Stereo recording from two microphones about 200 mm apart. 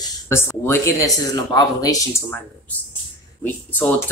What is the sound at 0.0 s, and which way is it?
Speech, 10° left (ahead or behind).